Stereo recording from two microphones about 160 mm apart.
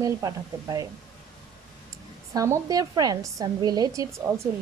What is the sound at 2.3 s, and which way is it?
Speech, 20° right (ahead or behind).